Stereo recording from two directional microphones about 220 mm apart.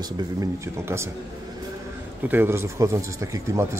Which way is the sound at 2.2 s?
10° right (ahead or behind).